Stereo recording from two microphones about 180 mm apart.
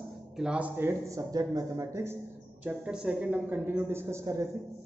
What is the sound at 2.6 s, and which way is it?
A woman's voice, 5° right (ahead or behind).